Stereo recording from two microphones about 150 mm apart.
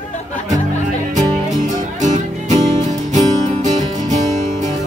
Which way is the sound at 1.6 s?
55° right (ahead or behind).